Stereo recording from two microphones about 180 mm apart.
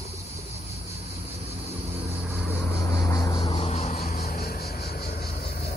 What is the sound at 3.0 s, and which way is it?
Vehicle, 15° left (ahead or behind).